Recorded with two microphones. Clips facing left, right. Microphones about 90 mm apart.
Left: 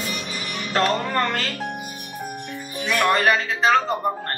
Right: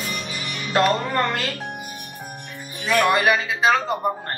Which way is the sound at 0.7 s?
15° right (ahead or behind).